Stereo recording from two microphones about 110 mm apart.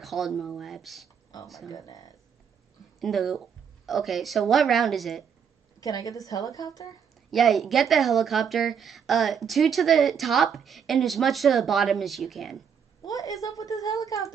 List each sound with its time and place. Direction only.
0.0 s speech: centre (ahead or behind)
1.7 s a woman's voice: 35° left (ahead or behind)
3.0 s speech: centre (ahead or behind)
5.8 s a woman's voice: 30° left (ahead or behind)
7.2 s speech: centre (ahead or behind)
13.0 s a woman's voice: 30° left (ahead or behind)